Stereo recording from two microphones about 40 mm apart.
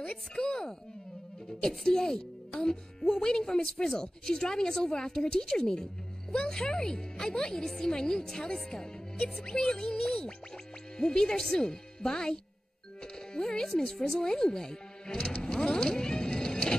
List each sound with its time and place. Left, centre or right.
0.4 s a child's voice: centre
13.0 s music: centre